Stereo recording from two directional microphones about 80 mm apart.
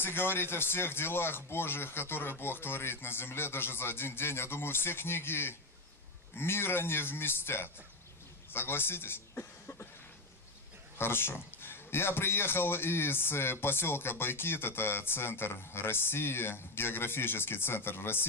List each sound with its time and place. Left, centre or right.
0.0 s a man's voice: left
11.0 s a man's voice: left